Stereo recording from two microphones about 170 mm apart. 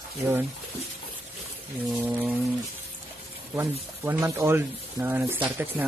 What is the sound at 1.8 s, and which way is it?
Speech, 10° right (ahead or behind).